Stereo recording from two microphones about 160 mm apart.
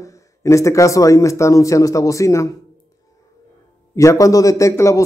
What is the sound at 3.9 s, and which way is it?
A man's voice, 20° left (ahead or behind).